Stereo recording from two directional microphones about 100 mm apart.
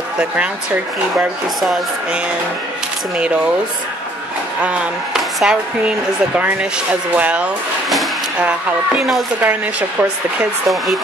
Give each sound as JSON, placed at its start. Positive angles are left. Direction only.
{"t": 1.1, "sound": "speech", "side_deg": -5}
{"t": 4.6, "sound": "speech", "side_deg": -10}